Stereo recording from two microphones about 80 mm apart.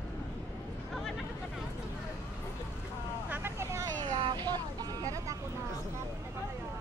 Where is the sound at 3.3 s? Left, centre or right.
Right.